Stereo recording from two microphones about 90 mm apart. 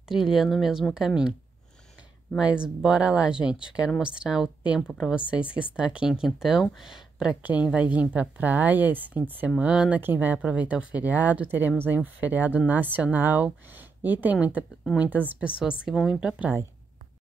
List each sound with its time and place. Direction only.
0.1 s speech: 5° right (ahead or behind)
2.3 s speech: 10° right (ahead or behind)
15.8 s speech: 5° right (ahead or behind)